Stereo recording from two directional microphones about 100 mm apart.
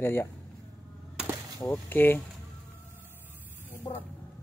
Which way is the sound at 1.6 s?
25° left (ahead or behind).